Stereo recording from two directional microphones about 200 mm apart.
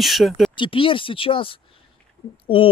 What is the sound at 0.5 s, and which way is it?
Speech, 25° left (ahead or behind).